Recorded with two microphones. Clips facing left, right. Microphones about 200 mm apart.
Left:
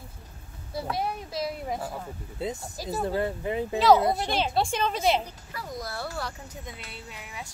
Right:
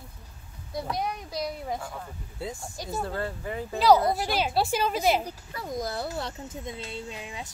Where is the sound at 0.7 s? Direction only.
5° left (ahead or behind).